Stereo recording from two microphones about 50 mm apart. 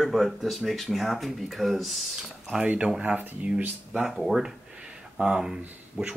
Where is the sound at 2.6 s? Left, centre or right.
Right.